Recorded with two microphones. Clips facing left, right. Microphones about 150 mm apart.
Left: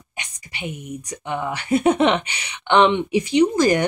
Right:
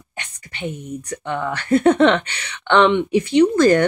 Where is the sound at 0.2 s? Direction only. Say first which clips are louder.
Right 3 dB; 15° left (ahead or behind).